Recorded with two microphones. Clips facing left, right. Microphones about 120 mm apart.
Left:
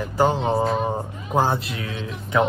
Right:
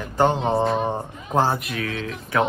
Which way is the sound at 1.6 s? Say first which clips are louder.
Right 3 dB; 25° left (ahead or behind).